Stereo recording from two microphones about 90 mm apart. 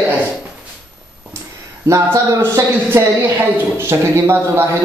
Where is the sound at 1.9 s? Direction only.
35° right (ahead or behind).